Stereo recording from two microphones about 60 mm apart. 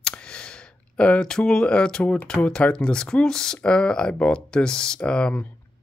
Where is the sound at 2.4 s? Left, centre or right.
Centre.